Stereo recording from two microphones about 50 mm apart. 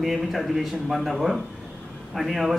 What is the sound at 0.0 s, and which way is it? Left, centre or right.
A man's voice, centre.